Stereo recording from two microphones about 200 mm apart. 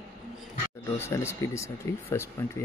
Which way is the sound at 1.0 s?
15° left (ahead or behind).